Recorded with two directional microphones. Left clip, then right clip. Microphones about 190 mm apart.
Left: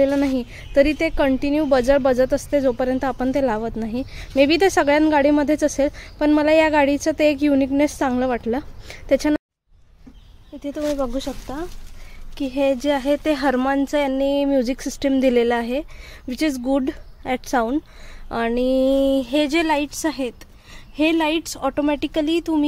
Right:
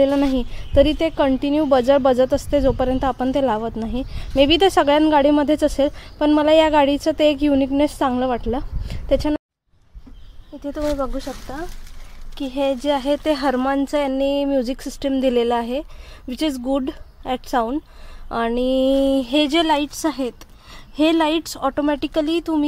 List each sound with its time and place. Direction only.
0.0 s speech: centre (ahead or behind); by 9.4 s 15° left (ahead or behind)
10.6 s speech: 15° left (ahead or behind)
11.1 s speech: 30° left (ahead or behind)
12.4 s speech: 15° left (ahead or behind)